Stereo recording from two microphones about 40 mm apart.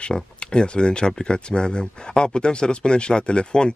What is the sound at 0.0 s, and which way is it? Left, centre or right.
Speech, left.